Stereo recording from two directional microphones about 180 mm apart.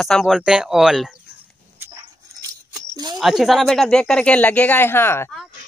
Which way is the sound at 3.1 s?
Centre (ahead or behind).